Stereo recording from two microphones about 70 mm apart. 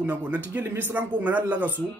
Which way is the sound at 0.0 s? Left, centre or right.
Right.